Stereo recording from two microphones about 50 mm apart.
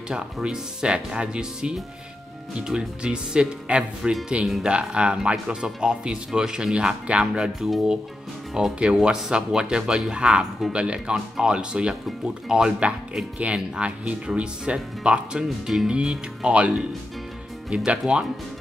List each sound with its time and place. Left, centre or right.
0.1 s speech: centre
8.8 s speech: centre